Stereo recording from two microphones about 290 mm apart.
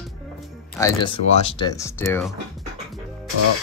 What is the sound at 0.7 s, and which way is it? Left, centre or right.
Speech, centre.